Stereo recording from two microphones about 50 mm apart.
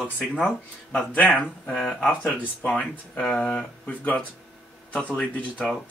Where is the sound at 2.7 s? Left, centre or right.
Centre.